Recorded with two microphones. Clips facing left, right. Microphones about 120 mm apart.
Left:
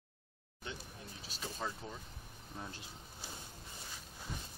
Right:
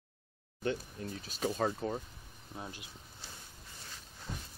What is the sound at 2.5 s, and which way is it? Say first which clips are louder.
Speech: right 2 dB; 15° right (ahead or behind).